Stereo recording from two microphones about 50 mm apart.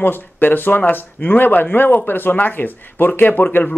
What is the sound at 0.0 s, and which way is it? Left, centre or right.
Speech, left.